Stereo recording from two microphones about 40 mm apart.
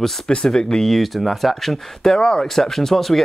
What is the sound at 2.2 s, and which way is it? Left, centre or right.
Speech, centre.